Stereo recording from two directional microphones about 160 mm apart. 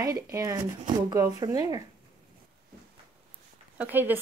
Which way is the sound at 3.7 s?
10° right (ahead or behind).